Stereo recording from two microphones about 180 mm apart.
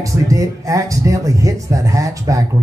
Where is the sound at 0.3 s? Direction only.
15° right (ahead or behind).